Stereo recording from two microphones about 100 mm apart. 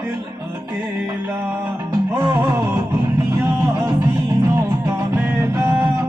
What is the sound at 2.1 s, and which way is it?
Music, 25° right (ahead or behind).